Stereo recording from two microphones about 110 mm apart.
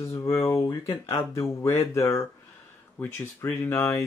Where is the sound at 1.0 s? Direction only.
25° left (ahead or behind).